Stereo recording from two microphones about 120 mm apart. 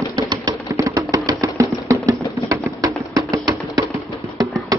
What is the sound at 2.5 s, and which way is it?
Music, 25° right (ahead or behind).